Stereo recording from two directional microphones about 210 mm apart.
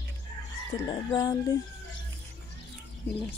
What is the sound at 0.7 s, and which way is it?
Speech, 15° left (ahead or behind).